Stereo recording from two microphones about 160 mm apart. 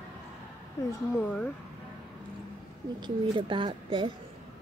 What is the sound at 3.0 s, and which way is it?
Speech, 30° right (ahead or behind).